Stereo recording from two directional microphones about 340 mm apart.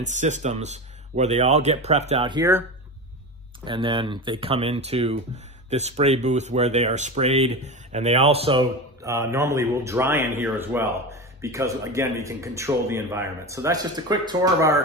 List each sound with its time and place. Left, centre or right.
0.0 s speech: right
3.6 s speech: centre